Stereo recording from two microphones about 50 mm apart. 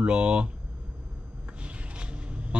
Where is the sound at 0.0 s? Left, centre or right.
Right.